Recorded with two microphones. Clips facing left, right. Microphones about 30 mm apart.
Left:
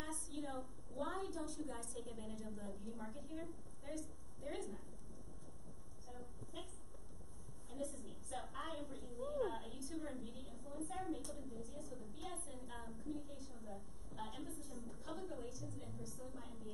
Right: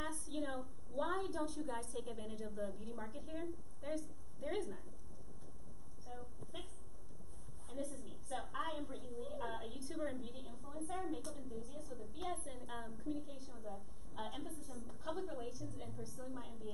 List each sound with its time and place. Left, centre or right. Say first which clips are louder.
0.0 s a sound: right 4 dB; centre
0.9 s a woman's voice: right 4 dB; centre
6.0 s a woman's voice: right 3 dB; centre
7.7 s a woman's voice: right 1 dB; centre
11.6 s a woman's voice: right 1 dB; centre
11.9 s a woman's voice: right 5 dB; centre
14.5 s a woman's voice: right 1 dB; centre
14.9 s a woman's voice: right 6 dB; centre